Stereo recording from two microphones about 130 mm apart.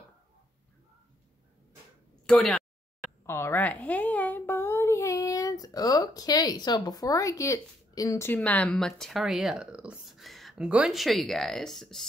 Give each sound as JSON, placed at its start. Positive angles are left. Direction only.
{"t": 2.2, "sound": "speech", "side_deg": 5}
{"t": 3.3, "sound": "a woman's voice", "side_deg": 20}
{"t": 8.3, "sound": "speech", "side_deg": 10}